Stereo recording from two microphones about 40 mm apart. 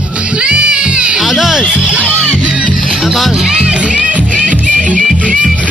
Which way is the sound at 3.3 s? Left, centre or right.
Centre.